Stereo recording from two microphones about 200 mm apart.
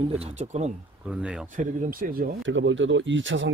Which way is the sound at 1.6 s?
45° right (ahead or behind).